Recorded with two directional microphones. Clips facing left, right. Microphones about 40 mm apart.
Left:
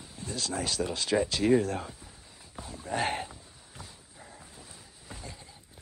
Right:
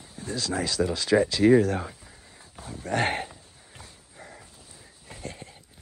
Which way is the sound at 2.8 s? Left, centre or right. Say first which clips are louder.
Right 4 dB; right.